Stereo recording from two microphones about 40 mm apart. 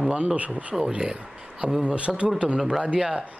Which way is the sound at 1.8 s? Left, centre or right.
Right.